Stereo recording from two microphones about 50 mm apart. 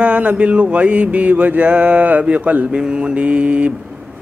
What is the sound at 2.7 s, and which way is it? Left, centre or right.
Mantra, centre.